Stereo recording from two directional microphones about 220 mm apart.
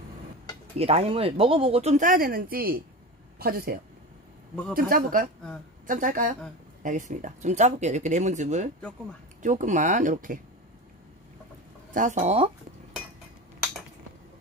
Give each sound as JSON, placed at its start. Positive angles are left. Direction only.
{"t": 0.7, "sound": "speech", "side_deg": -25}
{"t": 4.7, "sound": "speech", "side_deg": -40}
{"t": 11.9, "sound": "speech", "side_deg": -35}